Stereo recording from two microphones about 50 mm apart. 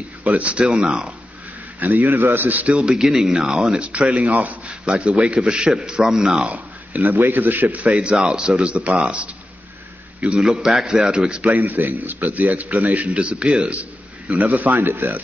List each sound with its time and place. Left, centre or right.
0.2 s speech: right
1.8 s speech: right
2.8 s a man's voice: centre
3.8 s a man's voice: right
6.5 s a man's voice: right
7.7 s a man's voice: right
11.4 s speech: right